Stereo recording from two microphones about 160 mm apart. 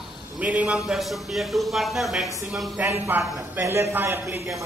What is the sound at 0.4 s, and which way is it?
Speech, 10° right (ahead or behind).